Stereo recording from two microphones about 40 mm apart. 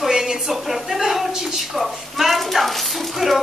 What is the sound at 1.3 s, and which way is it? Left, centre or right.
A woman's voice, centre.